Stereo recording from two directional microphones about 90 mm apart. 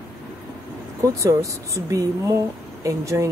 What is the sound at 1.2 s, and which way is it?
A woman's voice, 35° right (ahead or behind).